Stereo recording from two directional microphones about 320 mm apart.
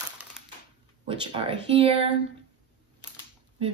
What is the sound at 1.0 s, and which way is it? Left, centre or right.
Speech, centre.